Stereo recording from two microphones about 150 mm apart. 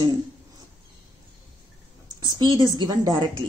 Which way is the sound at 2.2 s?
30° right (ahead or behind).